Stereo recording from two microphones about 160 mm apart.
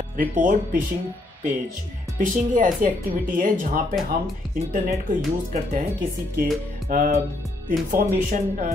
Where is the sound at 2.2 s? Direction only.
55° right (ahead or behind).